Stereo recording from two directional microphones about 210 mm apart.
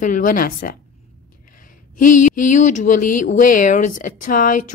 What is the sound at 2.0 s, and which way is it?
Speech, 40° left (ahead or behind).